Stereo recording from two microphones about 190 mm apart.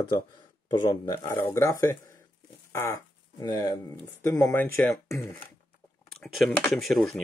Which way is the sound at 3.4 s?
20° left (ahead or behind).